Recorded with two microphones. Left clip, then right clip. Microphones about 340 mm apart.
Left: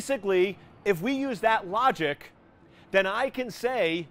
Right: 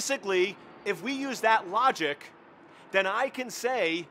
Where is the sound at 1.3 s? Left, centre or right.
Left.